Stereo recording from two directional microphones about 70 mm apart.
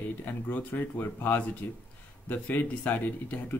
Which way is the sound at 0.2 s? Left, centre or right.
Left.